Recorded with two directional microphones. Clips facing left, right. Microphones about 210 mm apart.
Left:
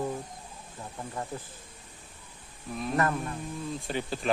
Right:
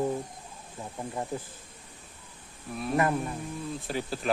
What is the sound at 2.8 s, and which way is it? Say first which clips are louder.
Speech: right 2 dB; 10° right (ahead or behind).